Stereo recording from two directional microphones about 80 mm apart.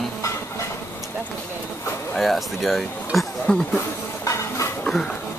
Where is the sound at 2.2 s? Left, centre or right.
Centre.